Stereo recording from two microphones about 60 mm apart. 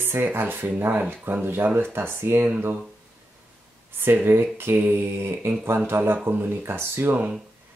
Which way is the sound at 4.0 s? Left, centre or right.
Right.